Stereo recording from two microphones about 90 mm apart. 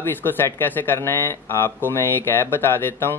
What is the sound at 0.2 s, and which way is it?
Speech, 25° left (ahead or behind).